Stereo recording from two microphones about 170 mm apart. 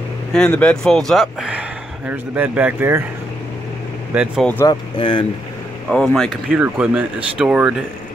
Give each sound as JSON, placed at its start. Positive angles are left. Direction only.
{"t": 0.3, "sound": "speech", "side_deg": 5}
{"t": 4.4, "sound": "speech", "side_deg": 10}
{"t": 4.6, "sound": "speech", "side_deg": 25}
{"t": 5.9, "sound": "speech", "side_deg": 0}